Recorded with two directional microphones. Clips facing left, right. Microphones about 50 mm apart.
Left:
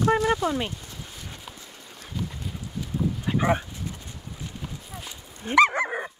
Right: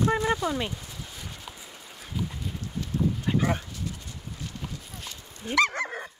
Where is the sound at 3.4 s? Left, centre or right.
Left.